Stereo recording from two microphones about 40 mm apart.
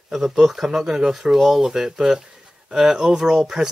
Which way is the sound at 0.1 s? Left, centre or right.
Centre.